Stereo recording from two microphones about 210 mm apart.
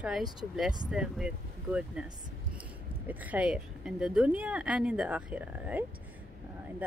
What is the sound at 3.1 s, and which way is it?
Speech, 5° right (ahead or behind).